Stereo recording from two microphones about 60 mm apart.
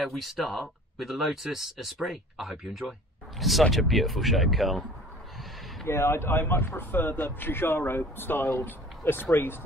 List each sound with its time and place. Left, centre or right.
0.0 s speech: centre
5.9 s speech: left